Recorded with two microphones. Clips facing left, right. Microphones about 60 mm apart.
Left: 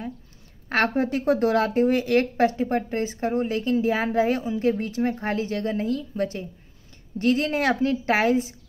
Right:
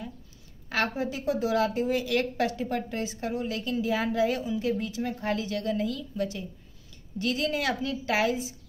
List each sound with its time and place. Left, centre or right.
0.7 s a woman's voice: left